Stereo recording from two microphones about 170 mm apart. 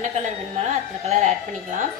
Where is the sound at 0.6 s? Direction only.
45° right (ahead or behind).